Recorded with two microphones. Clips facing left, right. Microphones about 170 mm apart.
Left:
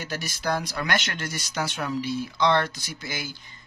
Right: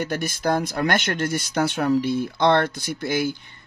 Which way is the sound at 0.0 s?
55° right (ahead or behind).